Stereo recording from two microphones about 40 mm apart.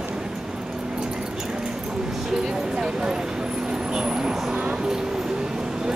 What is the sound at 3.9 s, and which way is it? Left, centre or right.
Vehicle, centre.